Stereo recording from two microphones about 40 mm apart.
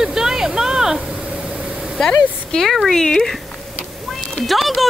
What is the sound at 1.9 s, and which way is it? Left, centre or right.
Speech, centre.